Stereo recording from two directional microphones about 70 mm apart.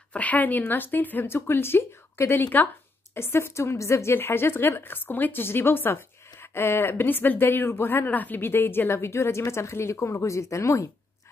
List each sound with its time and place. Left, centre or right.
0.1 s a woman's voice: left